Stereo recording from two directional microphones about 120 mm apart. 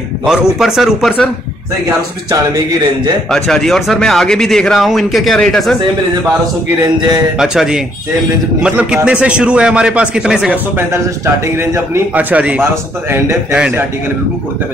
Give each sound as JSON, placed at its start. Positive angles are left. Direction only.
{"t": 0.2, "sound": "speech", "side_deg": -5}
{"t": 3.3, "sound": "speech", "side_deg": 0}
{"t": 7.3, "sound": "speech", "side_deg": -5}
{"t": 11.4, "sound": "speech", "side_deg": -20}